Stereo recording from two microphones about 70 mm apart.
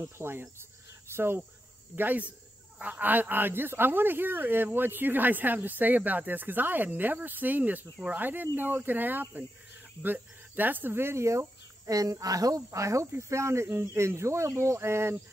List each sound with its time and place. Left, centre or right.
0.2 s speech: right
2.0 s speech: right